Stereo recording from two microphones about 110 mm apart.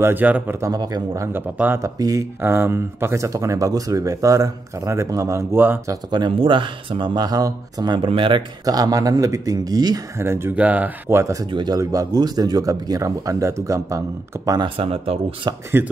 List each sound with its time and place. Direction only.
0.0 s speech: 15° right (ahead or behind)
0.6 s speech: 35° right (ahead or behind)
1.3 s speech: 20° right (ahead or behind)
1.8 s speech: 30° right (ahead or behind)
6.0 s speech: 45° right (ahead or behind)
8.6 s speech: 35° right (ahead or behind)
10.1 s speech: 25° right (ahead or behind)
11.5 s speech: 35° right (ahead or behind)
14.6 s speech: 60° right (ahead or behind)
15.8 s speech: 20° right (ahead or behind)